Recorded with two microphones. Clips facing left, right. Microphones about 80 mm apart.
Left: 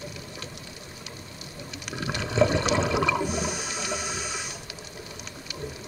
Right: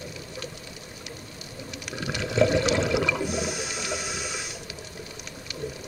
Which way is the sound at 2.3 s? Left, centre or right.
Left.